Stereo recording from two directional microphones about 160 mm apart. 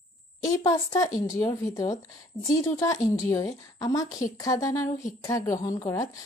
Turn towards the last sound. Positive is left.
turn(degrees=20)  # may be behind; listen again after turning